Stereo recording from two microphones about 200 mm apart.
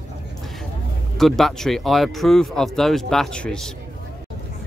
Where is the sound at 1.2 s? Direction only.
Centre (ahead or behind).